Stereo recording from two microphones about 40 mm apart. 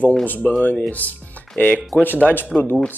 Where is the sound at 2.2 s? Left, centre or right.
Centre.